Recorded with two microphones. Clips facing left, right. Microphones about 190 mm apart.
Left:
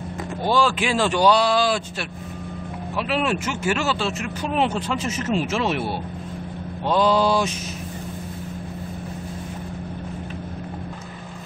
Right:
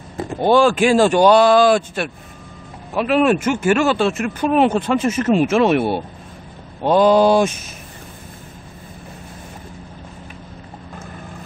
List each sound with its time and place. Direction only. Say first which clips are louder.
0.4 s speech: right 7 dB; 55° right (ahead or behind)